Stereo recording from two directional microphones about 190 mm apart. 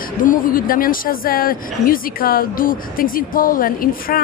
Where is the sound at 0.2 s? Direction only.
45° left (ahead or behind).